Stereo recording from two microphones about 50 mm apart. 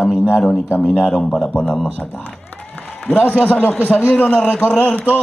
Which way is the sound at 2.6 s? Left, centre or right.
Left.